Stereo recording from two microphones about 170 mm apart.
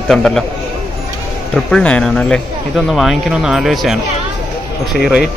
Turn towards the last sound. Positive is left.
turn(degrees=0)  # may be behind; listen again after turning